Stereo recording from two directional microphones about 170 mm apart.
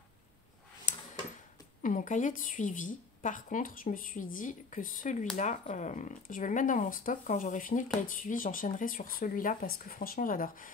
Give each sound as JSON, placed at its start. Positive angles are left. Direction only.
{"t": 1.8, "sound": "speech", "side_deg": 50}